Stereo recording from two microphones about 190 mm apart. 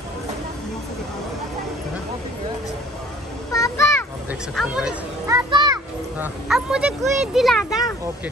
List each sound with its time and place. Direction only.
3.5 s a sound: 15° left (ahead or behind)
4.6 s speech: 5° right (ahead or behind)
5.2 s children playing: 20° right (ahead or behind)
6.2 s speech: 5° right (ahead or behind)